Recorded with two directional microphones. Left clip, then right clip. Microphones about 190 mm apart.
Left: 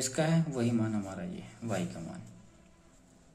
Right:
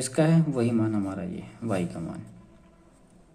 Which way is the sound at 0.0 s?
20° right (ahead or behind).